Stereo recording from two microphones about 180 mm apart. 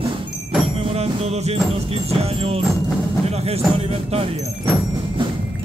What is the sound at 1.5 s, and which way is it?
Music, 35° right (ahead or behind).